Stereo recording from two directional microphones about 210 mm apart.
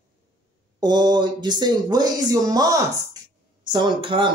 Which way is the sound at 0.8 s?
20° right (ahead or behind).